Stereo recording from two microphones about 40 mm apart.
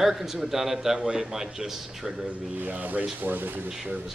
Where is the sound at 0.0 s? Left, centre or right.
Centre.